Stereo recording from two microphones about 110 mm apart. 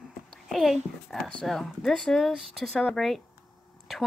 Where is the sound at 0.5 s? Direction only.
Centre (ahead or behind).